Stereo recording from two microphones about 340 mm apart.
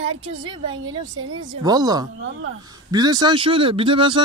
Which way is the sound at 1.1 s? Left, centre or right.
Right.